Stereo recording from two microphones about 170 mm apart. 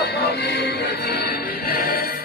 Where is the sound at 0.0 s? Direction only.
70° left (ahead or behind).